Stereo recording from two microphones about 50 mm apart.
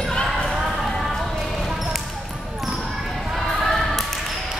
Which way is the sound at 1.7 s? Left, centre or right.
Centre.